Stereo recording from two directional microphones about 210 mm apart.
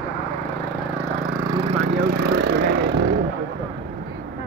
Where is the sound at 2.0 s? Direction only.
50° right (ahead or behind).